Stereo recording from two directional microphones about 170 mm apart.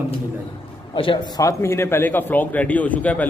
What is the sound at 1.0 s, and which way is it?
A man's voice, 30° left (ahead or behind).